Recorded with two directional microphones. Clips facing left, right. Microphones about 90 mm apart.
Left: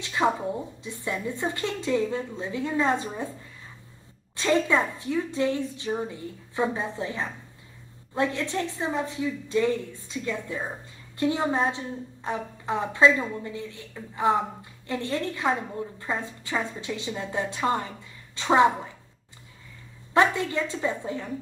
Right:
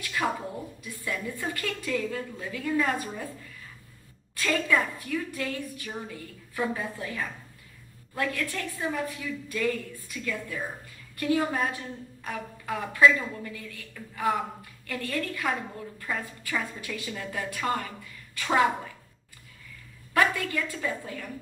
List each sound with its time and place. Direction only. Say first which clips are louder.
0.0 s a woman's voice: left 5 dB; 25° left (ahead or behind)
20.2 s a woman's voice: left 3 dB; 25° left (ahead or behind)